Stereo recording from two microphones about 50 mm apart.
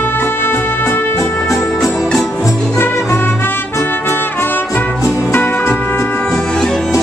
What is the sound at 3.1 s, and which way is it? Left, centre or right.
Music, left.